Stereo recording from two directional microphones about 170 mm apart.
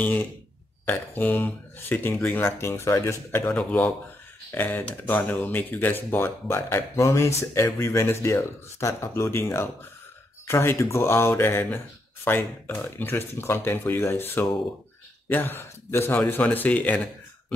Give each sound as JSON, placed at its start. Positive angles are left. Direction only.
{"t": 0.0, "sound": "speech", "side_deg": 10}